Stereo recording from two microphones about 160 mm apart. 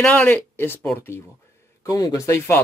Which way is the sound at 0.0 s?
10° left (ahead or behind).